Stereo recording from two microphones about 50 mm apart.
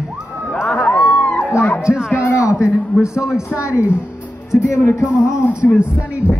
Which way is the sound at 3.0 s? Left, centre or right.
Left.